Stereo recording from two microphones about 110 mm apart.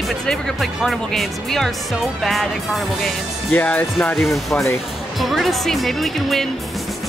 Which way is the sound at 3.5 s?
15° left (ahead or behind).